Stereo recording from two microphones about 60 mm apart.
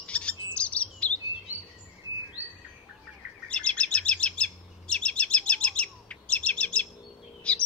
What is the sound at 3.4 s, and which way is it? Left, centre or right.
Chirp, centre.